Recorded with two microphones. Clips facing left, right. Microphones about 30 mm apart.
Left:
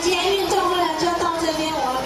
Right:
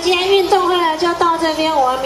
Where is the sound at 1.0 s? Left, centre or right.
Right.